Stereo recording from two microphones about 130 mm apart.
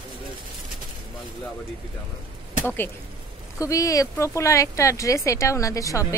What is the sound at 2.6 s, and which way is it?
Speech, 15° left (ahead or behind).